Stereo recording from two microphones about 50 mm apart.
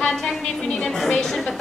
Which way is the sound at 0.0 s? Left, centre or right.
Centre.